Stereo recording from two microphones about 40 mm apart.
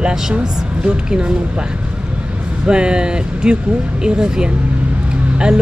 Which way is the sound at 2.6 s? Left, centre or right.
Right.